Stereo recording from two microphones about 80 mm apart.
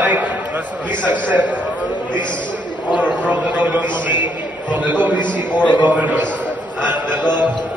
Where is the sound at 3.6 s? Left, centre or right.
Right.